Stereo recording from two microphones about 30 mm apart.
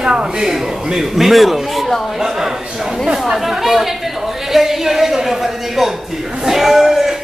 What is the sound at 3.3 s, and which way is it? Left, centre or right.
Speech, centre.